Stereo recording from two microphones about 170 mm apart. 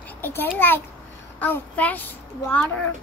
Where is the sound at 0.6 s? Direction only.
10° left (ahead or behind).